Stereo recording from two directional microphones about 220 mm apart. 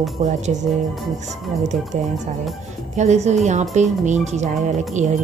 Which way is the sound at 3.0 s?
30° right (ahead or behind).